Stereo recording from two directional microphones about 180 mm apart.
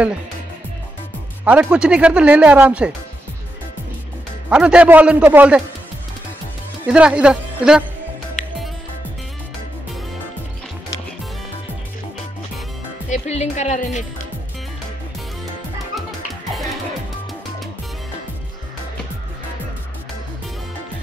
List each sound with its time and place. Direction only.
1.4 s speech: 10° right (ahead or behind)
4.5 s speech: 5° right (ahead or behind)
6.9 s speech: 5° right (ahead or behind)
13.1 s speech: 40° left (ahead or behind)